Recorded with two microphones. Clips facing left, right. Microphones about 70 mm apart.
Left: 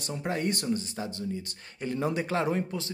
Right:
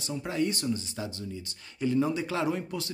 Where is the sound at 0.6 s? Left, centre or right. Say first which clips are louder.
Left 1 dB; left.